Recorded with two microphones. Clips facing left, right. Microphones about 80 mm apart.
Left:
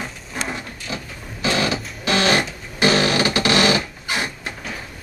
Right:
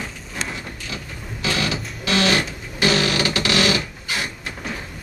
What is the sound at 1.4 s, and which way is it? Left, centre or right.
Music, left.